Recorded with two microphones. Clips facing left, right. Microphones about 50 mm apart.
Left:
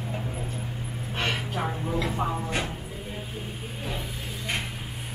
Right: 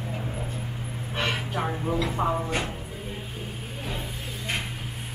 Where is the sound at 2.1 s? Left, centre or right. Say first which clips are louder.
Right 3 dB; centre.